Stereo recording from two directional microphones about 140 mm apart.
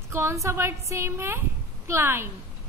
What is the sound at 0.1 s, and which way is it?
A woman's voice, 20° right (ahead or behind).